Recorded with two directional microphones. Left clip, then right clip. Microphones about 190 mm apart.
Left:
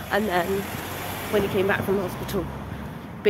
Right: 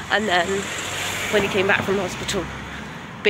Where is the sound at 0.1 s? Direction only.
5° left (ahead or behind).